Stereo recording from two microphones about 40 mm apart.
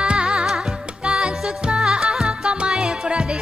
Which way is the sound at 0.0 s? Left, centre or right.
Right.